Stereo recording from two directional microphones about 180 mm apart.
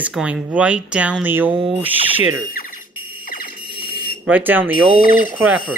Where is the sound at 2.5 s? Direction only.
50° left (ahead or behind).